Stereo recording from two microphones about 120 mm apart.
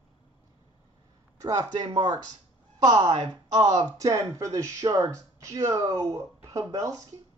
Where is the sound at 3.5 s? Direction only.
35° right (ahead or behind).